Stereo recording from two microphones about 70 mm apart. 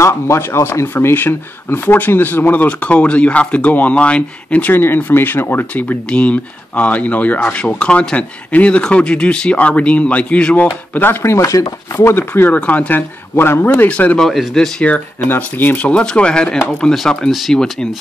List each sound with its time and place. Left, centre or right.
0.0 s speech: left
1.0 s speech: left
7.8 s speech: centre
11.2 s chopping: left
12.0 s speech: left
12.5 s speech: left
13.8 s speech: centre
14.2 s speech: centre
15.2 s speech: left
15.9 s speech: centre